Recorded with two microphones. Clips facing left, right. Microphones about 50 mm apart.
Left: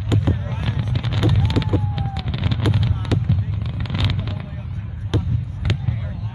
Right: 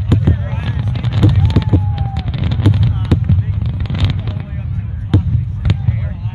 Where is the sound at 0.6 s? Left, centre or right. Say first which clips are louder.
Right 3 dB; centre.